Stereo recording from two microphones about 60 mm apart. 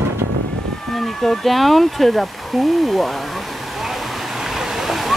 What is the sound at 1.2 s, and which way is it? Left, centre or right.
Speech, centre.